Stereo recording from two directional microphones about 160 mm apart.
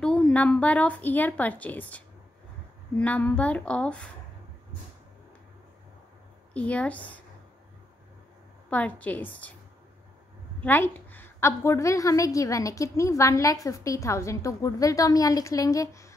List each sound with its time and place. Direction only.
0.0 s a woman's voice: 5° left (ahead or behind)
6.5 s a woman's voice: 10° left (ahead or behind)
8.6 s a woman's voice: 10° left (ahead or behind)
10.6 s a woman's voice: 10° left (ahead or behind)